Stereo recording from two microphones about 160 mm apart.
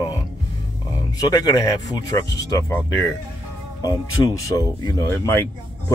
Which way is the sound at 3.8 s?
20° left (ahead or behind).